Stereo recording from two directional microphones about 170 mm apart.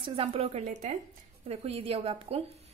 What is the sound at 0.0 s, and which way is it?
A woman's voice, 35° right (ahead or behind).